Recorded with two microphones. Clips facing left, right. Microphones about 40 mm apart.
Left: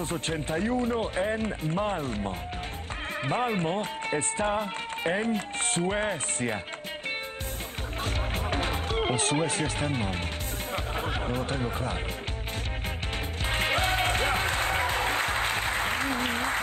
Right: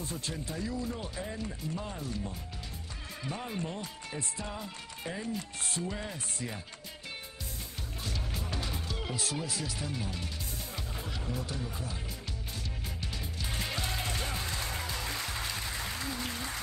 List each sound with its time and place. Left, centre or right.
0.0 s speech: left
8.0 s music: left
13.5 s music: left